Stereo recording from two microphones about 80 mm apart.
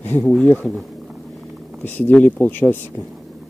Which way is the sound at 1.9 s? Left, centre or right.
Left.